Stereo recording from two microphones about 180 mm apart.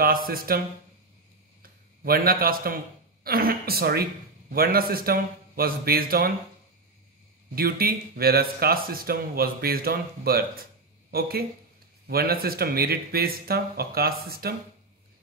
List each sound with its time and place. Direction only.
0.0 s speech: 55° right (ahead or behind)
1.6 s a man's voice: 55° right (ahead or behind)
7.5 s speech: 55° right (ahead or behind)